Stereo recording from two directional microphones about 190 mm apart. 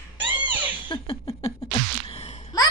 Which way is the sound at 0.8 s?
30° left (ahead or behind).